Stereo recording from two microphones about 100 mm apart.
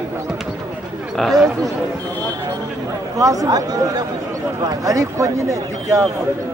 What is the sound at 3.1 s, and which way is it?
Speech, 35° right (ahead or behind).